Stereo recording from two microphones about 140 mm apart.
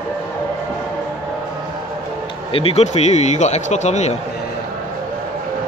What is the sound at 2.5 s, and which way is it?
Speech, 50° left (ahead or behind).